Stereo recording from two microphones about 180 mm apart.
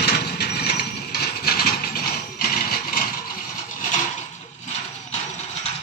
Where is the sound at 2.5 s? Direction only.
55° left (ahead or behind).